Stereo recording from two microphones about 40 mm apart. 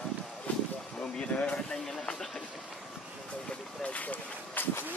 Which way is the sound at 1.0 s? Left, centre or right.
Centre.